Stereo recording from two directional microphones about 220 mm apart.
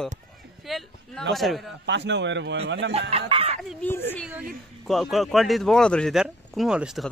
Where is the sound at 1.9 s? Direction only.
55° right (ahead or behind).